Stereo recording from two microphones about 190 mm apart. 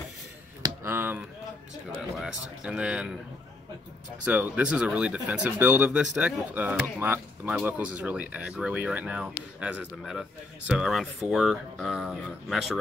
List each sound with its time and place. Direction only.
0.6 s a sound: 10° right (ahead or behind)
2.0 s speech: 5° right (ahead or behind)
4.2 s speech: 5° right (ahead or behind)